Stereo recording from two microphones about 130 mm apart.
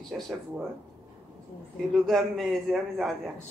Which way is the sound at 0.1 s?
5° right (ahead or behind).